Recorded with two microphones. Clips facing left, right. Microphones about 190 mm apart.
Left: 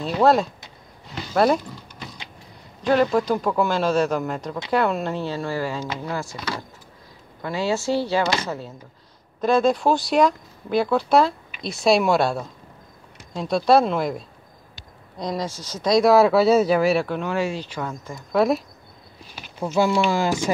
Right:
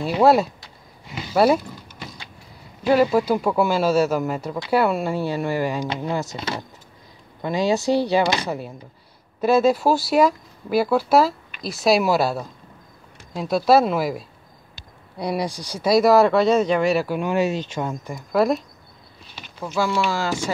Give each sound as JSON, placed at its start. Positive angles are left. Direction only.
{"t": 0.0, "sound": "speech", "side_deg": -10}
{"t": 1.0, "sound": "a sound", "side_deg": -5}
{"t": 2.8, "sound": "speech", "side_deg": -10}
{"t": 17.2, "sound": "speech", "side_deg": -15}
{"t": 18.3, "sound": "speech", "side_deg": 0}
{"t": 19.6, "sound": "speech", "side_deg": 25}
{"t": 20.1, "sound": "speech", "side_deg": 15}